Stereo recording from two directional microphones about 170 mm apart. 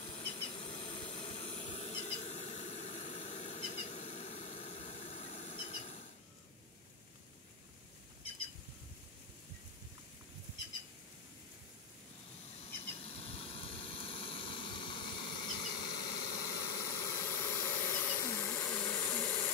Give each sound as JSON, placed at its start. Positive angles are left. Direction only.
{"t": 0.0, "sound": "steam", "side_deg": 35}
{"t": 13.0, "sound": "vehicle", "side_deg": 35}
{"t": 18.2, "sound": "a sound", "side_deg": 15}